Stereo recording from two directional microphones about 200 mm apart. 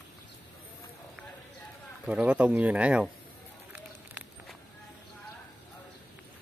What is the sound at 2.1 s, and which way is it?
Speech, 5° right (ahead or behind).